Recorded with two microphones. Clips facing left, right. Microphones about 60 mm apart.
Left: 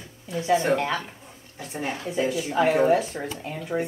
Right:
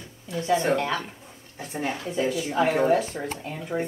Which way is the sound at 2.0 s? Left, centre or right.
Left.